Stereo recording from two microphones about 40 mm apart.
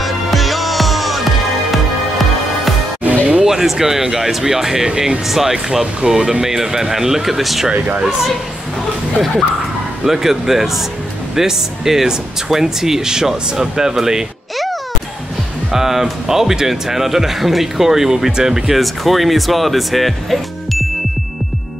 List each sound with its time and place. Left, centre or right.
0.0 s music: centre
3.0 s music: right
3.4 s speech: centre
10.0 s speech: centre
15.7 s speech: centre
18.8 s speech: centre